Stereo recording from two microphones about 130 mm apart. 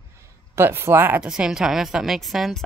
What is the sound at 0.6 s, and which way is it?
A woman's voice, 20° right (ahead or behind).